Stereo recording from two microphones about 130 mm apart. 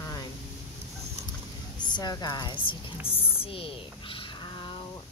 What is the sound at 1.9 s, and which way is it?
A woman's voice, 30° left (ahead or behind).